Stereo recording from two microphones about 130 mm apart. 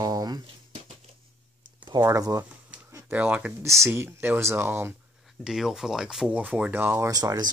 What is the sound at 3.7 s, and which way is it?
Speech, 20° right (ahead or behind).